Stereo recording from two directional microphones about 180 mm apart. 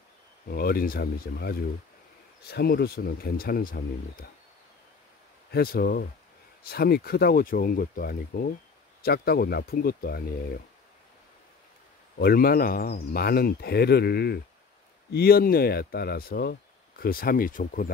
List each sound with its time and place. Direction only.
0.5 s speech: 60° left (ahead or behind)
5.5 s speech: 60° left (ahead or behind)
12.2 s speech: 55° left (ahead or behind)